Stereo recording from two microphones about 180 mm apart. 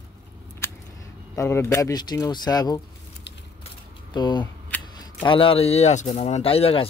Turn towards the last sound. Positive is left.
turn(degrees=30)  # may be behind; listen again after turning